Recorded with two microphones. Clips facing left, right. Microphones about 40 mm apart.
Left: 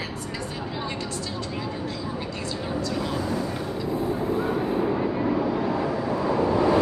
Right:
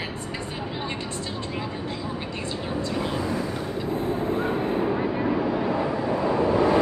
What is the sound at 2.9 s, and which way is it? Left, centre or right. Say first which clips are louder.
Vehicle: right 2 dB; centre.